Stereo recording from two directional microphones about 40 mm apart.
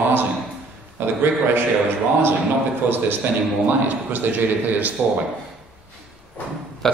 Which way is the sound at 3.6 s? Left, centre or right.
Right.